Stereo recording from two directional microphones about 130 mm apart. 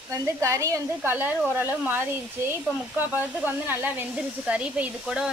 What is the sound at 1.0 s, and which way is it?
Speech, 15° right (ahead or behind).